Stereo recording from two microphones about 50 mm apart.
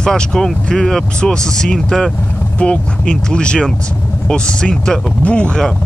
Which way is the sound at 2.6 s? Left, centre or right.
Centre.